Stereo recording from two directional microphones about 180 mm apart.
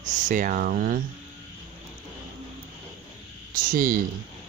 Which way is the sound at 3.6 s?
50° right (ahead or behind).